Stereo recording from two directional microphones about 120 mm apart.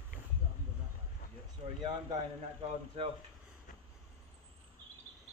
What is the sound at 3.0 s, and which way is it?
Speech, 55° right (ahead or behind).